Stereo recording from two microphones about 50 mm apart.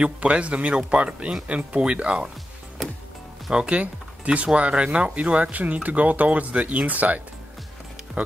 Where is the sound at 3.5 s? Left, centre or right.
Right.